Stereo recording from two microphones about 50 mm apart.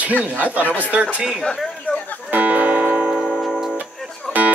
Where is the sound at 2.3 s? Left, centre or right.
Right.